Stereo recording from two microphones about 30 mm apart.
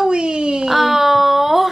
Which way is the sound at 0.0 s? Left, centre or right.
Right.